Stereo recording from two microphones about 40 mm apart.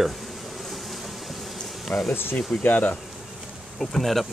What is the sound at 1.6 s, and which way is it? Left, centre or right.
Bee, centre.